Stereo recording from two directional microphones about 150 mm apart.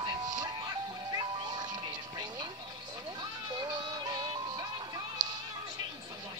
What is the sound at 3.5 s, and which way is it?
Music, 30° right (ahead or behind).